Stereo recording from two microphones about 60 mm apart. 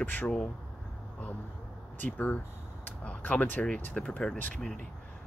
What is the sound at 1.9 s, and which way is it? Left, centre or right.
Speech, left.